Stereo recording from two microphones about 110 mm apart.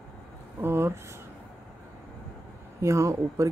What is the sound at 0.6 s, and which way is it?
Speech, 20° right (ahead or behind).